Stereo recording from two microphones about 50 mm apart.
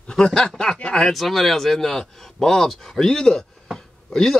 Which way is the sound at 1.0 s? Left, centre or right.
Centre.